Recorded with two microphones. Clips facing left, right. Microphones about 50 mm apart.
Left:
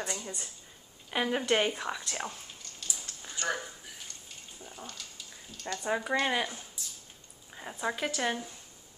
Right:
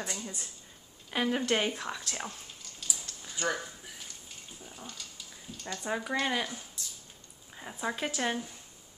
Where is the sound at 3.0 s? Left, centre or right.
Centre.